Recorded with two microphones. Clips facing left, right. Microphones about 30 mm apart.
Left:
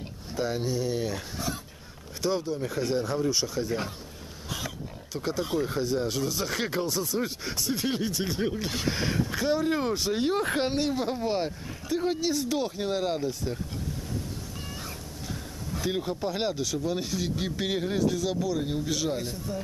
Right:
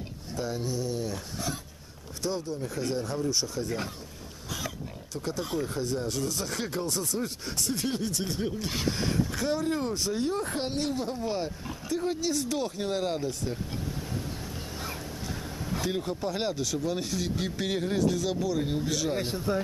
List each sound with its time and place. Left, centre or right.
0.3 s a sound: left
0.6 s speech: left
2.3 s speech: left
5.1 s speech: left
6.9 s speech: centre
7.2 s speech: left
10.3 s speech: left
10.6 s speech: left; by 13.6 s centre
15.8 s speech: centre
19.1 s a man's voice: right